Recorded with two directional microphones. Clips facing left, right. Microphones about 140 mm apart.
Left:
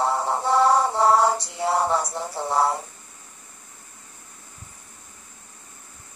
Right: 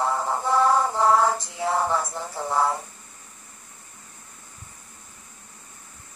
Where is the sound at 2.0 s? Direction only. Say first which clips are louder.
Left 2 dB; 30° left (ahead or behind).